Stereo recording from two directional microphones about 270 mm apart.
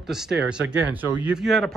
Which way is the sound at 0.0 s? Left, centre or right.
Centre.